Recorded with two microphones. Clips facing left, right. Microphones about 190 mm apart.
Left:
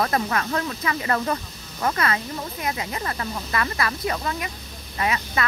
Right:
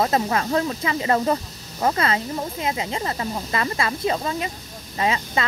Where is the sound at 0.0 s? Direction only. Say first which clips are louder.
Right 2 dB; 25° right (ahead or behind).